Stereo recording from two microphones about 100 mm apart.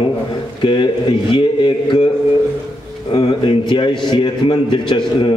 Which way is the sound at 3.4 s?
55° left (ahead or behind).